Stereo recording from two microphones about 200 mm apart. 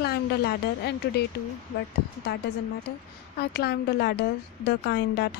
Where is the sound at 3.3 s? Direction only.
55° left (ahead or behind).